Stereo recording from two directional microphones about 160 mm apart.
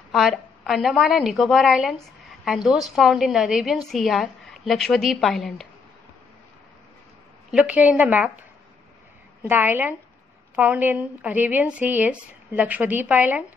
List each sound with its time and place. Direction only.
0.1 s a woman's voice: centre (ahead or behind)
7.5 s a woman's voice: 10° right (ahead or behind)
9.4 s a woman's voice: 10° right (ahead or behind)